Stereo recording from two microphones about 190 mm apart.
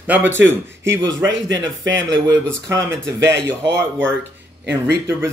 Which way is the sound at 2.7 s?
15° right (ahead or behind).